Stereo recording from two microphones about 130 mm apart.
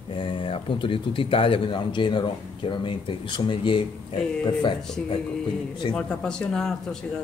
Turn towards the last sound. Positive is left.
turn(degrees=5)  # may be behind; listen again after turning